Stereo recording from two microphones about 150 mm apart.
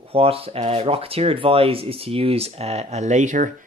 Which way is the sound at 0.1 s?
40° right (ahead or behind).